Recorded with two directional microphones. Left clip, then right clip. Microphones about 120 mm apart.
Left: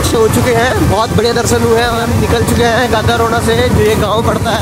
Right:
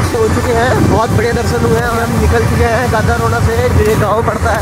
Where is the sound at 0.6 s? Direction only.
5° right (ahead or behind).